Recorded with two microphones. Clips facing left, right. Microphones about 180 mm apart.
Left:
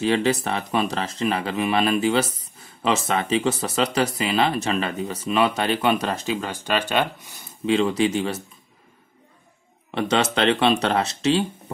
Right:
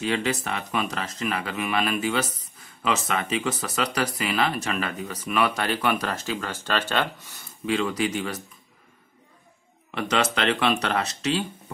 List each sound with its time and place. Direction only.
0.0 s speech: 30° left (ahead or behind)
9.8 s speech: 25° left (ahead or behind)